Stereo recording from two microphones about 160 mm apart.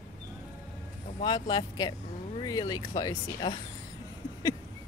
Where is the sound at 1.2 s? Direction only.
30° left (ahead or behind).